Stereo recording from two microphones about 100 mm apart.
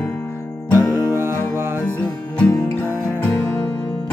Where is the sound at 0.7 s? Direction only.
25° right (ahead or behind).